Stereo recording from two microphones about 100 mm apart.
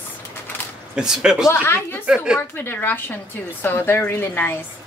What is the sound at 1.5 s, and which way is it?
Speech, 25° left (ahead or behind).